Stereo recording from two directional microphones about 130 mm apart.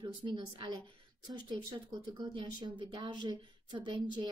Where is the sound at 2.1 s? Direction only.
35° right (ahead or behind).